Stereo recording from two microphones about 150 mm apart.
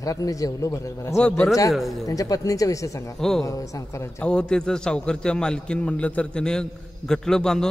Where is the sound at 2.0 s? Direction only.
25° left (ahead or behind).